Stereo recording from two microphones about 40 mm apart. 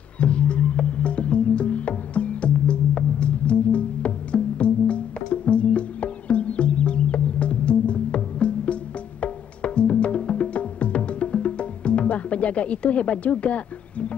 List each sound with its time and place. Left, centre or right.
0.2 s music: left